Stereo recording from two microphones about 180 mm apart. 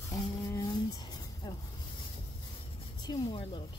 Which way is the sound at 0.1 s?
20° left (ahead or behind).